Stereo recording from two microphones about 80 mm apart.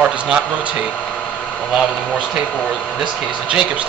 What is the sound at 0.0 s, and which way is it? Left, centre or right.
Speech, centre.